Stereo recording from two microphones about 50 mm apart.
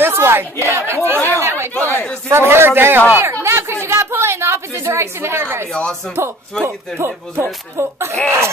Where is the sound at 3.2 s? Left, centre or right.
Right.